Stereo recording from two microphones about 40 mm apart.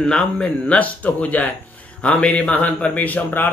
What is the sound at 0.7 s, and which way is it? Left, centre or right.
A man's voice, left.